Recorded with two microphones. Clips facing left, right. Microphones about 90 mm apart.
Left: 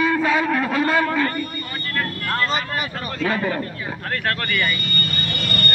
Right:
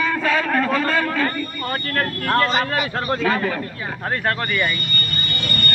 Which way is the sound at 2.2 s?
75° right (ahead or behind).